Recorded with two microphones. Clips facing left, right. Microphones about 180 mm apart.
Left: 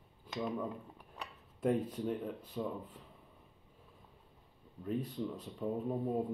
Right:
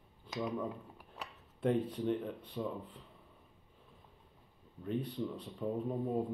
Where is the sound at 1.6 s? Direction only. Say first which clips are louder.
Even; 5° left (ahead or behind).